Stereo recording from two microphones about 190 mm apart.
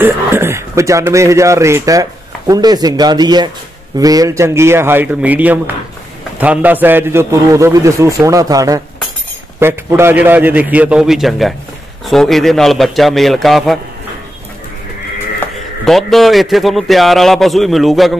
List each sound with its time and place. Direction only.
0.0 s a man's voice: 15° right (ahead or behind)
15.8 s a man's voice: centre (ahead or behind)